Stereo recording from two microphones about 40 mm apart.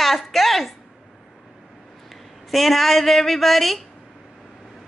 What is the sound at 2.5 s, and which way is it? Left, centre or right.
A woman's voice, centre.